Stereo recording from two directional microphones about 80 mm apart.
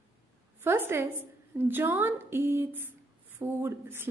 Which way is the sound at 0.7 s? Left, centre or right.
Right.